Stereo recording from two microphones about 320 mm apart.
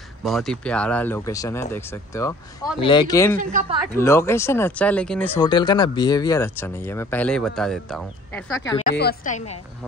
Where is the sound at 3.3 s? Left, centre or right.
Right.